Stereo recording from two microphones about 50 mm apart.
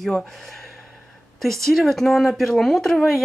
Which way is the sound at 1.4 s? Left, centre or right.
Centre.